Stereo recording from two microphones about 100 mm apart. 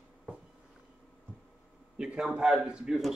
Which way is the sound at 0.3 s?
10° right (ahead or behind).